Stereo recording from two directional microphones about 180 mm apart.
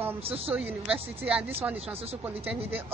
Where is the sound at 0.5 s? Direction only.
10° right (ahead or behind).